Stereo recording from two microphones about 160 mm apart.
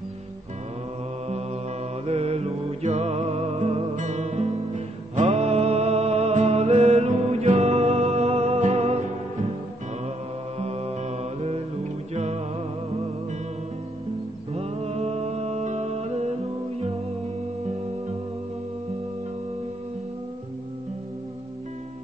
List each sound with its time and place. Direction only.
2.0 s music: 40° right (ahead or behind)
10.6 s mantra: 40° right (ahead or behind)
12.1 s music: 45° right (ahead or behind)
14.5 s music: 40° right (ahead or behind)